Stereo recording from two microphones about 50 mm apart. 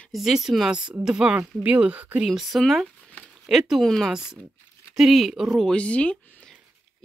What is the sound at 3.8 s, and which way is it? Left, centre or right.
Speech, centre.